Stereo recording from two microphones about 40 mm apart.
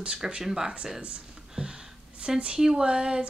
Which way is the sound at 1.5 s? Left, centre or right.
Centre.